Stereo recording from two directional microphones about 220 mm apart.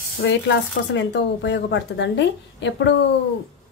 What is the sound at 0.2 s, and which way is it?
Speech, 55° left (ahead or behind).